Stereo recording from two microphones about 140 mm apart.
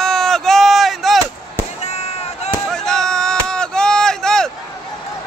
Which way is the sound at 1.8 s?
50° left (ahead or behind).